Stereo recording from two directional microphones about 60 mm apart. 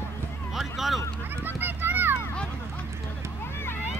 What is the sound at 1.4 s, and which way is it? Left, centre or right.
Children playing, right.